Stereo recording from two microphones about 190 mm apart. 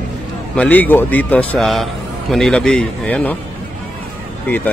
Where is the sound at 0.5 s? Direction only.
10° left (ahead or behind).